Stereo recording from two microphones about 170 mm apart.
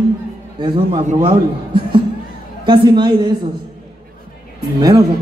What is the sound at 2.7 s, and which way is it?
Speech, 25° right (ahead or behind).